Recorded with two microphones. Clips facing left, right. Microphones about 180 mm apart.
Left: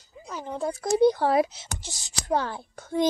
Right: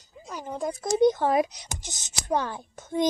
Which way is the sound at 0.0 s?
15° right (ahead or behind).